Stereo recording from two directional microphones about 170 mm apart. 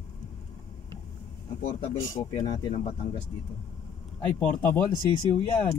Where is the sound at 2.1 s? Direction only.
25° left (ahead or behind).